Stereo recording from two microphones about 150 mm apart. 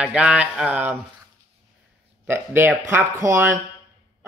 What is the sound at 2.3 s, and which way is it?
Speech, 15° right (ahead or behind).